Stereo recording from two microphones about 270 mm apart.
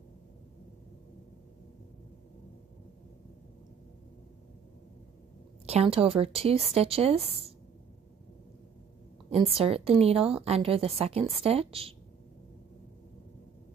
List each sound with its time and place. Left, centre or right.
5.7 s a woman's voice: right
9.6 s a woman's voice: right